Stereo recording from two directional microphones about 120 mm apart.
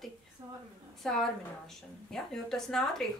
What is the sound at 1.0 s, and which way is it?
A woman's voice, centre (ahead or behind).